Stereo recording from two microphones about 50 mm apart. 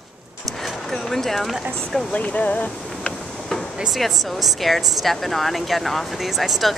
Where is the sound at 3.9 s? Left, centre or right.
Centre.